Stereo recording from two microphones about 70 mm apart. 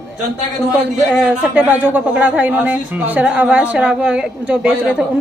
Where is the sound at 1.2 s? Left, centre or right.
Centre.